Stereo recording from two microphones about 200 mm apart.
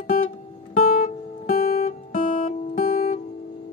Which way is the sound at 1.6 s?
45° left (ahead or behind).